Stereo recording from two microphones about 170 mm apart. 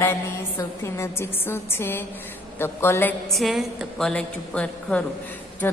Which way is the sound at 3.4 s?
Centre (ahead or behind).